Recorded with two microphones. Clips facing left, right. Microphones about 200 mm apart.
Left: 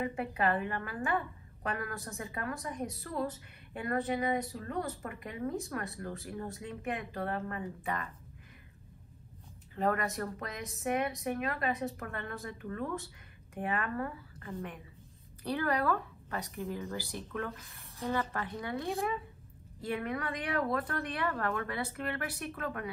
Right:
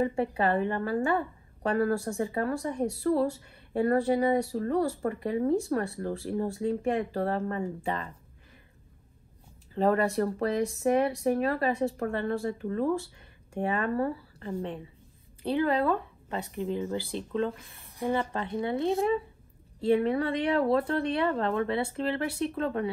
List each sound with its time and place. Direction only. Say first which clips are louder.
0.0 s a woman's voice: right 6 dB; 30° right (ahead or behind)
9.8 s a woman's voice: right 7 dB; 35° right (ahead or behind)